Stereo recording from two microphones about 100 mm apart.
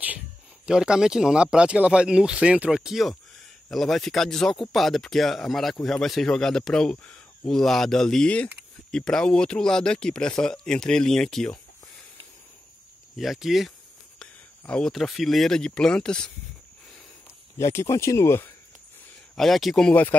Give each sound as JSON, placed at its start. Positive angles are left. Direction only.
{"t": 0.7, "sound": "speech", "side_deg": -5}
{"t": 13.1, "sound": "speech", "side_deg": 0}
{"t": 17.6, "sound": "speech", "side_deg": 30}
{"t": 19.3, "sound": "speech", "side_deg": 0}
{"t": 19.9, "sound": "speech", "side_deg": 15}